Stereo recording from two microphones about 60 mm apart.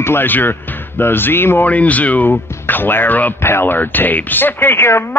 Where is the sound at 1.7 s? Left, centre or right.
Left.